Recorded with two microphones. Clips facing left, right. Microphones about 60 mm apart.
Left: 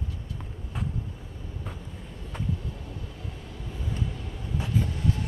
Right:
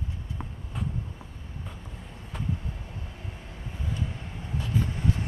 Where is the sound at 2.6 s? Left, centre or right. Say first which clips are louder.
Left 1 dB; right.